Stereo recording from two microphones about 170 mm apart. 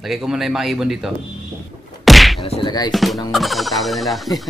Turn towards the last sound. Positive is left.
turn(degrees=0)  # may be behind; listen again after turning